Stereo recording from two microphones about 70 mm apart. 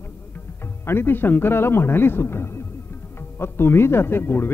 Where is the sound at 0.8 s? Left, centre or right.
Left.